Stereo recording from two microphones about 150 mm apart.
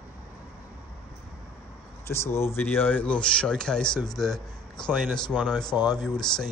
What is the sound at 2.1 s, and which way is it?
Speech, 15° left (ahead or behind).